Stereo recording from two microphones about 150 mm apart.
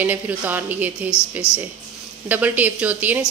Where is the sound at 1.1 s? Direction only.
15° left (ahead or behind).